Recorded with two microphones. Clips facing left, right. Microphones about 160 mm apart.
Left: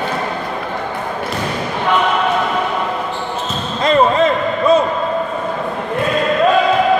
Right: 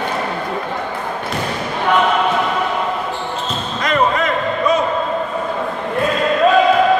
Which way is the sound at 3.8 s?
30° left (ahead or behind).